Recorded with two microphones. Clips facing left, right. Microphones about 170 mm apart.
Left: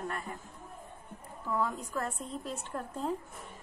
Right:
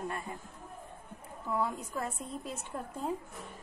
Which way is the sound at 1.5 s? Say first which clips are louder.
Left 1 dB; 10° right (ahead or behind).